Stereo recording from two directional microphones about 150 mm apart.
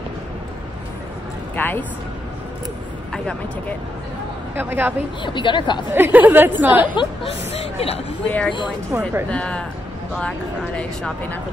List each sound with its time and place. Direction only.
1.6 s speech: 15° left (ahead or behind)
3.1 s speech: 5° left (ahead or behind)
4.6 s a woman's voice: 15° right (ahead or behind)
5.2 s a woman's voice: 30° left (ahead or behind)
5.9 s a woman's voice: 15° right (ahead or behind)
7.0 s speech: 40° left (ahead or behind)
8.3 s speech: 10° left (ahead or behind)
8.9 s a woman's voice: 15° right (ahead or behind)
9.3 s speech: 5° left (ahead or behind)
10.8 s speech: 10° left (ahead or behind)